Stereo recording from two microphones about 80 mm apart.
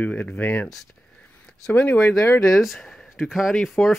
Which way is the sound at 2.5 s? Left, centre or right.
Centre.